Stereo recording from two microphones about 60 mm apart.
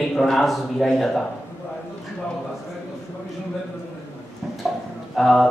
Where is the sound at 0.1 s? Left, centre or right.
Centre.